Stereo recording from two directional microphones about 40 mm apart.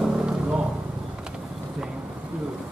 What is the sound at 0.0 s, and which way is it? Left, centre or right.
Vehicle, right.